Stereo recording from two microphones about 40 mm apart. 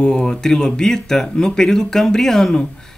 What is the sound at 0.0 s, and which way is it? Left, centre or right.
Speech, left.